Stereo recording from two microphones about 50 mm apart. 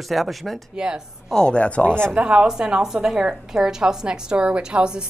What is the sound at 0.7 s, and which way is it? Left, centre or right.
Speech, centre.